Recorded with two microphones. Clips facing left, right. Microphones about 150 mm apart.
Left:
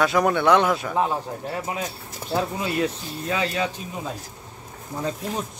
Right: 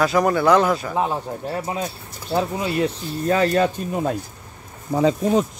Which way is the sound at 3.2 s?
45° right (ahead or behind).